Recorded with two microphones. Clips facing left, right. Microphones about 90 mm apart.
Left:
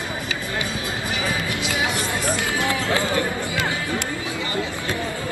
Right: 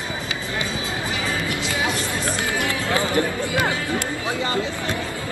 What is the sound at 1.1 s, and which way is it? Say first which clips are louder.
Music: left 2 dB; 15° left (ahead or behind).